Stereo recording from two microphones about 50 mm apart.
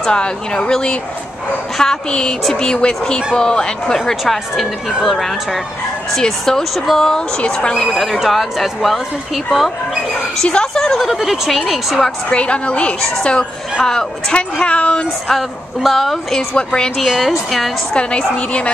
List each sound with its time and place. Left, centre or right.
0.0 s speech: centre
4.2 s a woman's voice: centre
10.3 s a woman's voice: centre
12.3 s a woman's voice: left
15.2 s a woman's voice: centre
16.5 s speech: centre
17.0 s a woman's voice: centre
17.9 s a woman's voice: left